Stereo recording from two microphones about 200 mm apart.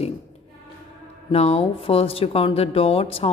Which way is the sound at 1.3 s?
30° left (ahead or behind).